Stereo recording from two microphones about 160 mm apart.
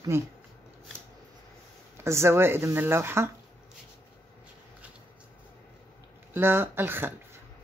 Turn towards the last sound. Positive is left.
turn(degrees=-15)  # may be behind; listen again after turning